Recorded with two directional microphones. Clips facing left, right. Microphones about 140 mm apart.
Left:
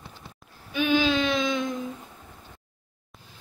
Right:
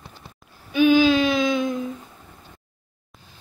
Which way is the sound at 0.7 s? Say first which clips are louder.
Right 7 dB; 5° right (ahead or behind).